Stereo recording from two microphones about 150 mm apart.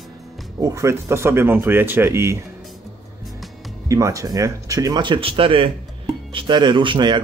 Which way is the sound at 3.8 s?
20° right (ahead or behind).